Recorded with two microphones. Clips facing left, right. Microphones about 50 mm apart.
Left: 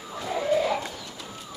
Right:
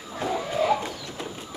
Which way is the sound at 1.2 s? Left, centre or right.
Right.